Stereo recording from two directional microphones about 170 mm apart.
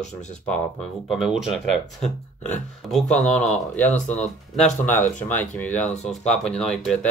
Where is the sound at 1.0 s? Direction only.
Centre (ahead or behind).